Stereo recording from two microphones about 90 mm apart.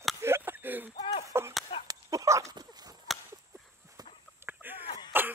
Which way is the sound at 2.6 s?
45° right (ahead or behind).